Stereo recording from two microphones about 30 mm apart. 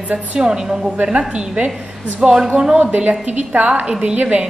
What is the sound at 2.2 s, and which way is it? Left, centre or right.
Speech, right.